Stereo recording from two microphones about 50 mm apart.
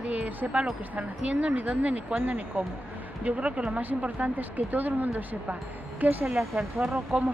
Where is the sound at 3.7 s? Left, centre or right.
Right.